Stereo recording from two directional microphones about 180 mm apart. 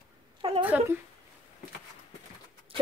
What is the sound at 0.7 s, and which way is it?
Speech, 10° right (ahead or behind).